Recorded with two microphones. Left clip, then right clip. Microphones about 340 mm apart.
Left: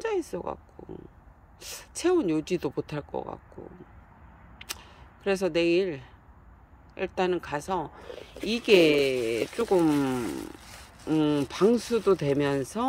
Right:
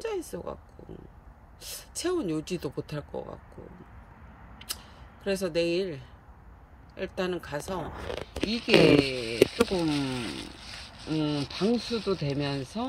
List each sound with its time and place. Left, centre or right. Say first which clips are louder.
0.0 s a sound: left 4 dB; centre
0.8 s speech: left 3 dB; centre
5.2 s speech: left 3 dB; centre
8.6 s speech: left 1 dB; left
9.2 s speech: right 3 dB; centre